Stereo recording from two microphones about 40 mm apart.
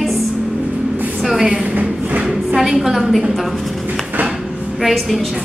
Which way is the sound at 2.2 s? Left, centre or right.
Centre.